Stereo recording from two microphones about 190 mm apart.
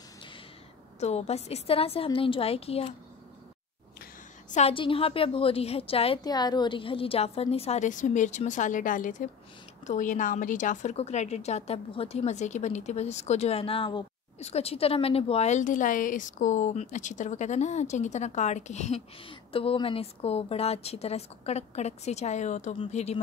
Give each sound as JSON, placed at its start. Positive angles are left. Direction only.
{"t": 0.9, "sound": "a woman's voice", "side_deg": 35}
{"t": 4.5, "sound": "a woman's voice", "side_deg": 35}